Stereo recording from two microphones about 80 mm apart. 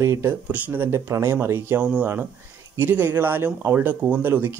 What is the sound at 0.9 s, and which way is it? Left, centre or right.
Speech, right.